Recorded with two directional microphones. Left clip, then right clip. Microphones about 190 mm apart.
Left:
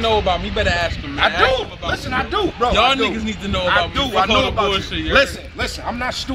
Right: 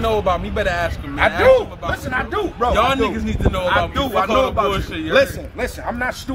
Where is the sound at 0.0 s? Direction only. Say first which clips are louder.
Left 1 dB; centre (ahead or behind).